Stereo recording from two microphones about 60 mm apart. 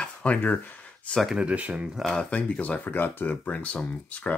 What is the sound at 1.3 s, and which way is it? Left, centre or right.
Speech, right.